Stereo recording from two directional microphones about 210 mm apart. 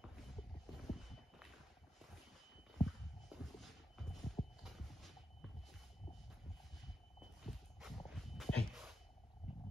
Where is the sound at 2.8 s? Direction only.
Centre (ahead or behind).